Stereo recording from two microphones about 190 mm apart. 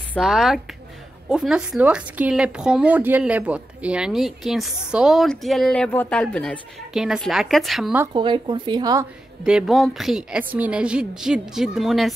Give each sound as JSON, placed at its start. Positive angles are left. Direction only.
{"t": 0.2, "sound": "a woman's voice", "side_deg": 0}
{"t": 8.1, "sound": "speech", "side_deg": -25}
{"t": 9.4, "sound": "a woman's voice", "side_deg": -5}